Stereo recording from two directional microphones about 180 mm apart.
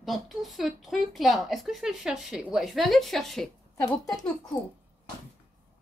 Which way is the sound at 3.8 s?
20° left (ahead or behind).